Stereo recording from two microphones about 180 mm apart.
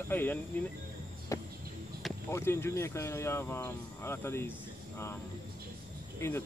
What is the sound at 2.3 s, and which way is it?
Speech, 15° left (ahead or behind).